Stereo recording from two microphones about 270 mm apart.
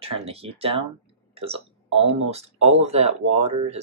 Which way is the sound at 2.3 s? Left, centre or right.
Right.